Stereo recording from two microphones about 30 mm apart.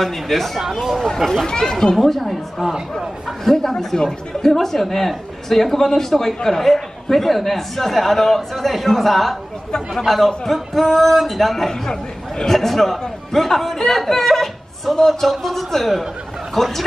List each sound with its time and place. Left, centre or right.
0.0 s a man's voice: centre; by 1.8 s left
2.0 s a man's voice: centre
3.4 s a woman's voice: centre
3.7 s a woman's voice: centre